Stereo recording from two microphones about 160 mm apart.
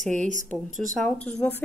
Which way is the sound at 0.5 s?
5° left (ahead or behind).